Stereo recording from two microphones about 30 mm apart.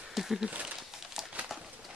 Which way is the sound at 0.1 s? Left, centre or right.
Centre.